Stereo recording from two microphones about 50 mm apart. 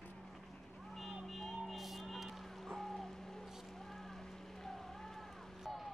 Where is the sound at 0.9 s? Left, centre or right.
Centre.